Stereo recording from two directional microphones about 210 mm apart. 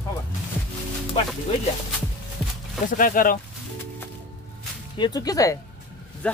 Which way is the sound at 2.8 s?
40° left (ahead or behind).